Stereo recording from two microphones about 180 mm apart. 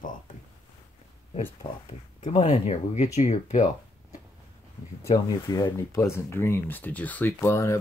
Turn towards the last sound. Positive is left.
turn(degrees=15)  # may be behind; listen again after turning